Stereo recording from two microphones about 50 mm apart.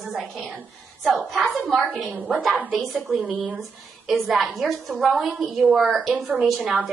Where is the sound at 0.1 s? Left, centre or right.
Centre.